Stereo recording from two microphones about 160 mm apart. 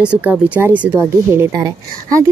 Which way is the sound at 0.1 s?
10° right (ahead or behind).